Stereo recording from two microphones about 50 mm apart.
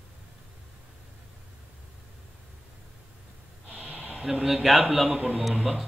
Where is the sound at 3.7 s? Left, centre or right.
Right.